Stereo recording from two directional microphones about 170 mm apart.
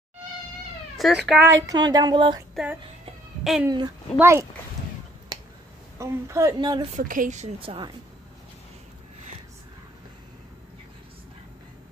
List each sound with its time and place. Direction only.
0.9 s speech: centre (ahead or behind)
1.4 s speech: 20° right (ahead or behind)
2.5 s speech: 5° right (ahead or behind)
3.6 s speech: 20° right (ahead or behind)
5.3 s a sound: 25° right (ahead or behind)
5.9 s speech: 15° right (ahead or behind)
6.9 s a woman's voice: 50° right (ahead or behind); by 7.9 s 30° right (ahead or behind)